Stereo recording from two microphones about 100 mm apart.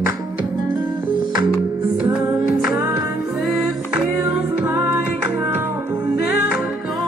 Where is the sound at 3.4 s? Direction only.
Centre (ahead or behind).